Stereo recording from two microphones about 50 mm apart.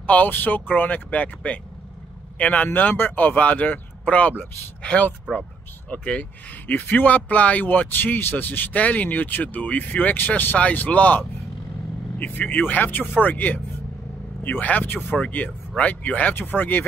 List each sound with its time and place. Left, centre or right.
0.0 s speech: left
2.7 s speech: left
12.2 s a man's voice: left